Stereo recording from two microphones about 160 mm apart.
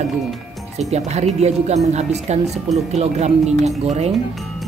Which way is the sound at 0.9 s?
45° right (ahead or behind).